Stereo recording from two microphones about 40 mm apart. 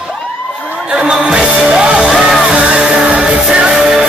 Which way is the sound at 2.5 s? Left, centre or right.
Right.